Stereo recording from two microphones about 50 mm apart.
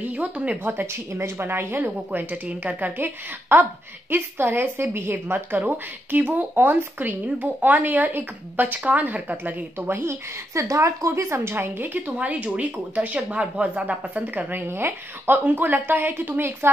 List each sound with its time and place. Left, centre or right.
0.0 s speech: right
0.7 s speech: right
3.5 s speech: right
11.8 s speech: right
14.7 s speech: right